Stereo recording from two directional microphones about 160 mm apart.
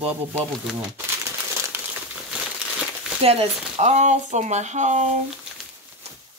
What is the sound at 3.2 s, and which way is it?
Speech, 40° right (ahead or behind).